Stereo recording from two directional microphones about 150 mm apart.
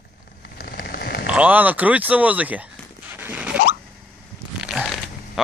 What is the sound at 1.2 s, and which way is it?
Speech, 10° right (ahead or behind).